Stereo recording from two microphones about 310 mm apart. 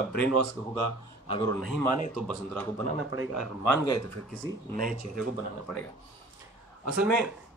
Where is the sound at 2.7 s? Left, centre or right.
Right.